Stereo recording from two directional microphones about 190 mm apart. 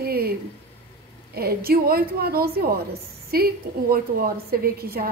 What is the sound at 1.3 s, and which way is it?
A woman's voice, 55° right (ahead or behind).